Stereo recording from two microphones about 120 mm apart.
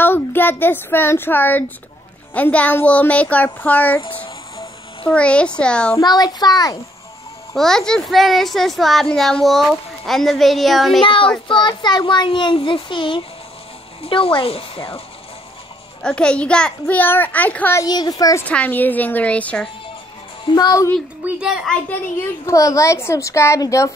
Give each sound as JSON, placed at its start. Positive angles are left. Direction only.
{"t": 0.0, "sound": "a child's voice", "side_deg": 15}
{"t": 4.0, "sound": "speech", "side_deg": 50}
{"t": 5.1, "sound": "a child's voice", "side_deg": 10}
{"t": 5.9, "sound": "a child's voice", "side_deg": 35}
{"t": 7.5, "sound": "speech", "side_deg": 5}
{"t": 11.0, "sound": "a child's voice", "side_deg": 45}
{"t": 16.0, "sound": "a child's voice", "side_deg": 5}
{"t": 17.7, "sound": "a child's voice", "side_deg": 35}
{"t": 18.5, "sound": "a child's voice", "side_deg": 15}
{"t": 20.5, "sound": "a child's voice", "side_deg": 30}
{"t": 21.2, "sound": "a child's voice", "side_deg": -10}
{"t": 22.5, "sound": "a child's voice", "side_deg": 25}